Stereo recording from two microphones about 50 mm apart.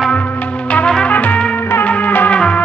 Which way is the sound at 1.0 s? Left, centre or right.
Left.